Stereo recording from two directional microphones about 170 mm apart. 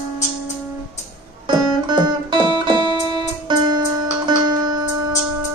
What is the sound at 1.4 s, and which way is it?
Music, 25° right (ahead or behind).